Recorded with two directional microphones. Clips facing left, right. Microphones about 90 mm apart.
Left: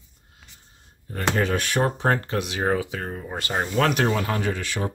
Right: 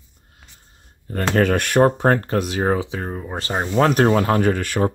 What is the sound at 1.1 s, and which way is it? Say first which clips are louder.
Speech: right 5 dB; 60° right (ahead or behind).